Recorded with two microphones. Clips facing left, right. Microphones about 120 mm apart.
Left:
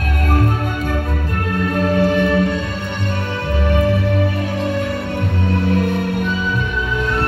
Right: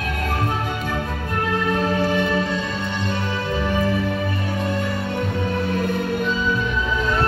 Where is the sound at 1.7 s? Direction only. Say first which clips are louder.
Left 6 dB; 55° left (ahead or behind).